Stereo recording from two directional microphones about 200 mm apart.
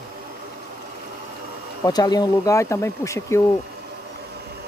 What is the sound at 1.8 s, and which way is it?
Speech, 20° left (ahead or behind).